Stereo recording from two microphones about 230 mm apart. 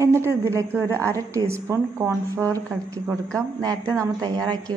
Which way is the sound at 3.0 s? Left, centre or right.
Centre.